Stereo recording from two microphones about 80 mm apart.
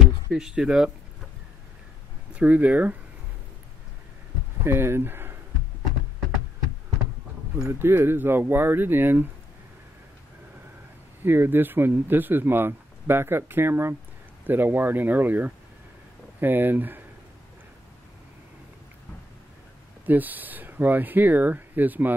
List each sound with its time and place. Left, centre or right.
0.3 s speech: centre
2.3 s speech: centre
4.6 s speech: right
7.6 s speech: right
11.2 s speech: right
20.1 s speech: right